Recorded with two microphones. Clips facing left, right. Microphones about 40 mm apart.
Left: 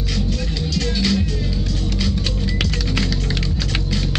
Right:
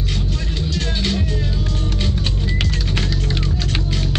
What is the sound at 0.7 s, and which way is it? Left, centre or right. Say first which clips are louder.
Music: left 3 dB; right.